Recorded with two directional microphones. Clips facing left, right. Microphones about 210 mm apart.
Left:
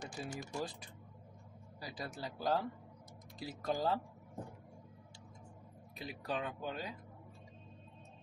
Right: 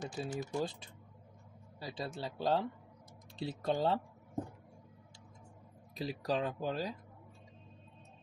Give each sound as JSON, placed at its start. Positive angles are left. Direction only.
{"t": 0.1, "sound": "speech", "side_deg": -30}
{"t": 5.9, "sound": "speech", "side_deg": -35}